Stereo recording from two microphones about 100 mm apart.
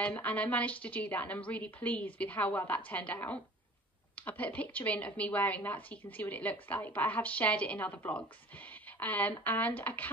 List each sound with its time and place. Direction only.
0.0 s a woman's voice: 15° left (ahead or behind)